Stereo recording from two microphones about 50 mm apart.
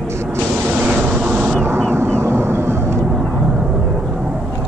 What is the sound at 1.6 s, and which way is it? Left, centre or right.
Vehicle, right.